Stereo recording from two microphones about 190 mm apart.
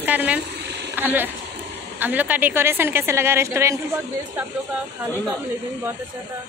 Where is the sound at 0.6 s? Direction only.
65° right (ahead or behind).